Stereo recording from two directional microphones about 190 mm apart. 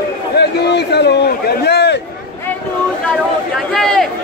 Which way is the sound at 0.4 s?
60° left (ahead or behind).